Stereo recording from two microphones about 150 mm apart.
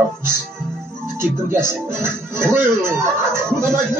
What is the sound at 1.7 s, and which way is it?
Speech, 15° right (ahead or behind).